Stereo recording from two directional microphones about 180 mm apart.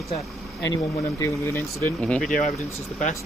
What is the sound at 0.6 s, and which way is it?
Speech, 20° left (ahead or behind).